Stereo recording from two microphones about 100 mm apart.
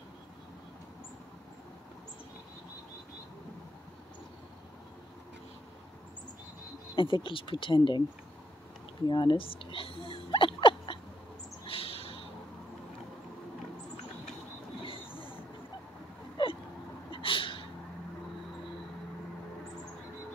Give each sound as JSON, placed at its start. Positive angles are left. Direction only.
{"t": 7.0, "sound": "speech", "side_deg": 55}
{"t": 9.0, "sound": "speech", "side_deg": 45}
{"t": 9.4, "sound": "a sound", "side_deg": 60}
{"t": 11.6, "sound": "bird", "side_deg": 65}
{"t": 14.9, "sound": "train", "side_deg": 60}
{"t": 16.4, "sound": "hiccup", "side_deg": 55}
{"t": 17.1, "sound": "a sound", "side_deg": 60}